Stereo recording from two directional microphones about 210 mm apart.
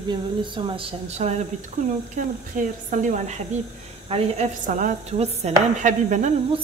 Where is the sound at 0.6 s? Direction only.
30° right (ahead or behind).